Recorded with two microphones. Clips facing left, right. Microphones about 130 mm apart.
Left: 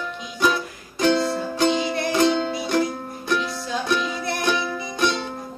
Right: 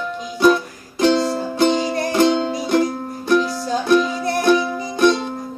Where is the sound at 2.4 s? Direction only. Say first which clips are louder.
Right 4 dB; 35° right (ahead or behind).